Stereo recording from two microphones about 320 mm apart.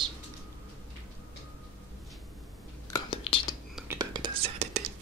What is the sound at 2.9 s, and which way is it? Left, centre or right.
Whispering, centre.